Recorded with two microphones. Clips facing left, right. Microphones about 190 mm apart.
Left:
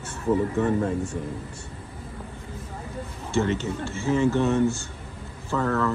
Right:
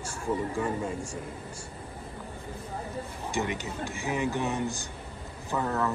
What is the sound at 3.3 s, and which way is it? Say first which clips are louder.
A man's voice: left 8 dB; 15° right (ahead or behind).